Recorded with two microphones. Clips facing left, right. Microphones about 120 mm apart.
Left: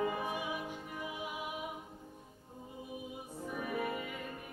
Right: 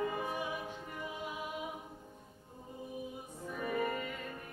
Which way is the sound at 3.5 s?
10° left (ahead or behind).